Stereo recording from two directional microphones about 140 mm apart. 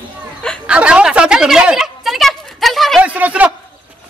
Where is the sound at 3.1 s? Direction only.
10° right (ahead or behind).